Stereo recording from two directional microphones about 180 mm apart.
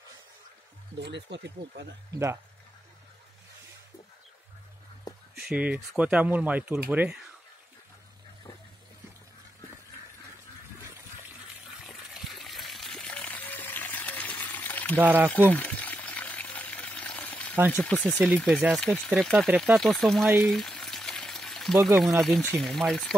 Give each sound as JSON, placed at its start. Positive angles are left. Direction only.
{"t": 1.0, "sound": "speech", "side_deg": -75}
{"t": 2.1, "sound": "speech", "side_deg": -15}
{"t": 5.4, "sound": "speech", "side_deg": -5}
{"t": 11.8, "sound": "water", "side_deg": 0}
{"t": 15.0, "sound": "speech", "side_deg": -10}
{"t": 15.5, "sound": "pour", "side_deg": 10}
{"t": 17.6, "sound": "speech", "side_deg": -5}
{"t": 17.8, "sound": "speech", "side_deg": 10}